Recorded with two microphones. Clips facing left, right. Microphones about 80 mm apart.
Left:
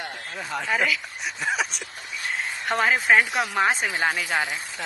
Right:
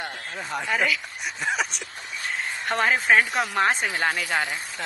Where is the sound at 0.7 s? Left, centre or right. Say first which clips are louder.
Even; centre.